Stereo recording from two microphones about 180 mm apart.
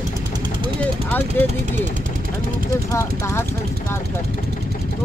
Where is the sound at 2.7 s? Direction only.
20° left (ahead or behind).